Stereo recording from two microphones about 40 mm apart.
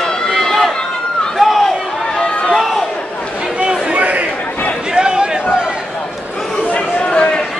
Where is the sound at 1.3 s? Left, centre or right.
Centre.